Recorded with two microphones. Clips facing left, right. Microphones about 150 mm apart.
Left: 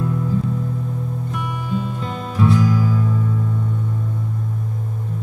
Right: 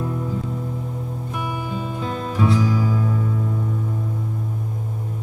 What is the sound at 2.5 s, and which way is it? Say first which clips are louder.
Music: left 2 dB; 20° right (ahead or behind).